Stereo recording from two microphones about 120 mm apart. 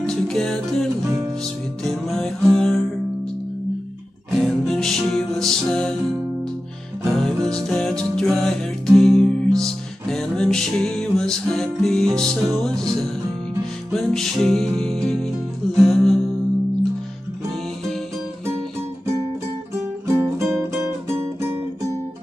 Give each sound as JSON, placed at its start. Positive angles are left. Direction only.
{"t": 0.0, "sound": "music", "side_deg": 5}
{"t": 4.4, "sound": "music", "side_deg": 5}
{"t": 20.1, "sound": "guitar", "side_deg": -25}
{"t": 20.7, "sound": "music", "side_deg": -20}